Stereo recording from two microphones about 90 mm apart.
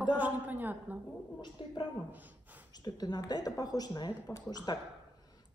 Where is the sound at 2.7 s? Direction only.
50° left (ahead or behind).